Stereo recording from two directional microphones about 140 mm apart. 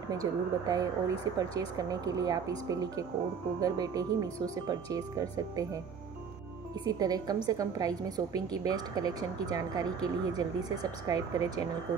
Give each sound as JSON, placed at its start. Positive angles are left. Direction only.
{"t": 0.1, "sound": "speech", "side_deg": -25}
{"t": 6.9, "sound": "speech", "side_deg": -25}